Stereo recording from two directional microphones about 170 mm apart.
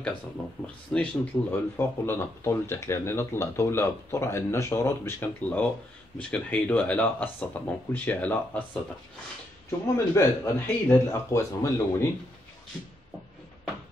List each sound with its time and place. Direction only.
0.9 s speech: 10° left (ahead or behind)
9.7 s speech: 15° left (ahead or behind)